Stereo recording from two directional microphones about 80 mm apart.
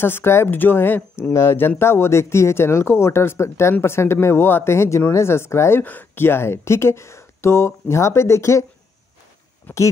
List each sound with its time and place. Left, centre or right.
0.0 s speech: left
9.7 s speech: left